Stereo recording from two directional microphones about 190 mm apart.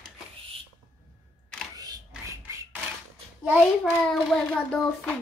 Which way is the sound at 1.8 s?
20° right (ahead or behind).